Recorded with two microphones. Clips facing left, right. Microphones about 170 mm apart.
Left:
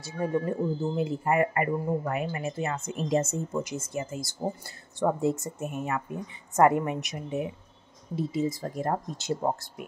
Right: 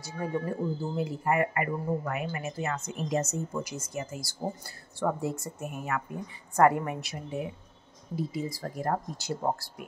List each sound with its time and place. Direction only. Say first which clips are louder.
0.0 s speech: left 4 dB; 25° left (ahead or behind)